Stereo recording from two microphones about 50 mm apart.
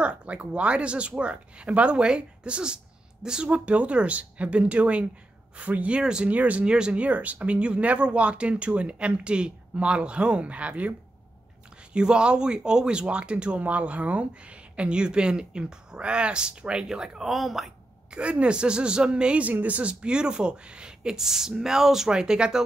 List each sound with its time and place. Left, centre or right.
0.0 s speech: right
3.4 s speech: right
6.3 s speech: right
6.7 s speech: centre
11.9 s speech: centre
18.1 s speech: right